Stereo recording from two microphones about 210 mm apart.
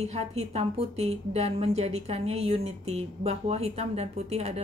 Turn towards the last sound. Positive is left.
turn(degrees=-30)  # may be behind; listen again after turning